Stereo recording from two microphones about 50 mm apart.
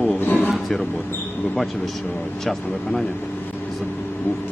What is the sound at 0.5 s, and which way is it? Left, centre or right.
Speech, centre.